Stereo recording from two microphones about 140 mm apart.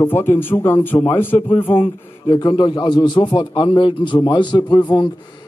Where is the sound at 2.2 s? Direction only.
30° left (ahead or behind).